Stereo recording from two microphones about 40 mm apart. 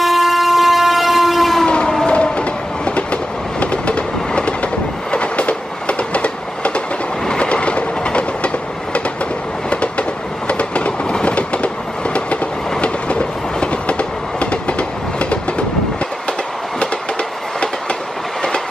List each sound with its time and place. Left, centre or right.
0.0 s train: centre
2.0 s train: left
9.7 s train: left